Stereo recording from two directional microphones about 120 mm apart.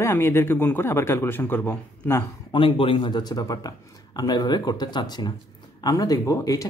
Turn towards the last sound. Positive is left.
turn(degrees=30)  # may be behind; listen again after turning